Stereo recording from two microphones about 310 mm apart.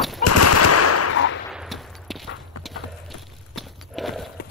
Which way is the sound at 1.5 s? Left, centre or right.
Centre.